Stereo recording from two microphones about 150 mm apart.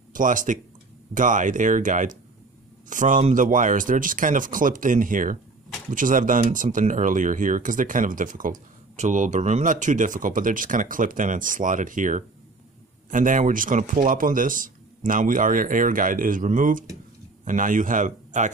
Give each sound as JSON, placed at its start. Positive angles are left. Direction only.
{"t": 0.1, "sound": "speech", "side_deg": -60}